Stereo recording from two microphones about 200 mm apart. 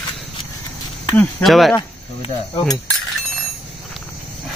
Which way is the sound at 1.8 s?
25° left (ahead or behind).